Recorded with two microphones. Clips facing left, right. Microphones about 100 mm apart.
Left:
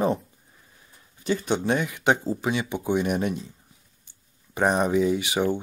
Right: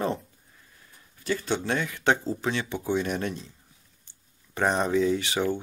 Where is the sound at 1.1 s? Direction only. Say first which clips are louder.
Left 3 dB; 20° left (ahead or behind).